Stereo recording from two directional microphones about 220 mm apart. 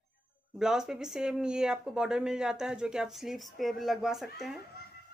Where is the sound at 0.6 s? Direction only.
Centre (ahead or behind).